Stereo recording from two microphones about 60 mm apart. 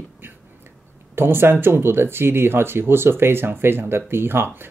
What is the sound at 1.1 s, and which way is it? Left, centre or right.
Speech, right.